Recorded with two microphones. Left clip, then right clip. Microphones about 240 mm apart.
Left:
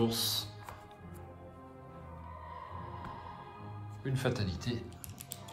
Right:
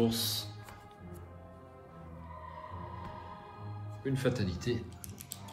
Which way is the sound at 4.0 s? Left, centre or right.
Left.